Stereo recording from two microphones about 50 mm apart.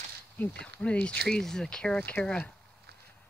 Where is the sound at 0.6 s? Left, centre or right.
Left.